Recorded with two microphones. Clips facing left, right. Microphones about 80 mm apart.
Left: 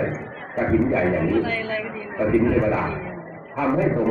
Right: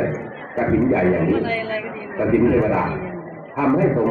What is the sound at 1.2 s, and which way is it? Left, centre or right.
Chatter, centre.